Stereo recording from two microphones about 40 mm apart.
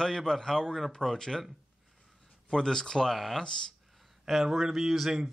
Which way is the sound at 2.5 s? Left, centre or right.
Centre.